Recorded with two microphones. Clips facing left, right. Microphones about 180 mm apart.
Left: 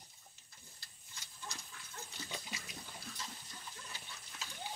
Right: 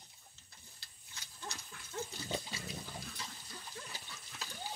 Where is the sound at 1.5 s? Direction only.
65° right (ahead or behind).